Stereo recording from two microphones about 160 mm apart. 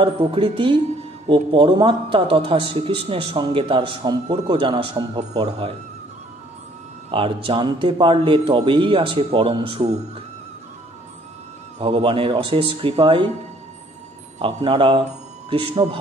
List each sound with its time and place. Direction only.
0.0 s a man's voice: 35° right (ahead or behind)
7.1 s a man's voice: 35° right (ahead or behind)
11.8 s a man's voice: 35° right (ahead or behind)
14.4 s speech: 35° right (ahead or behind)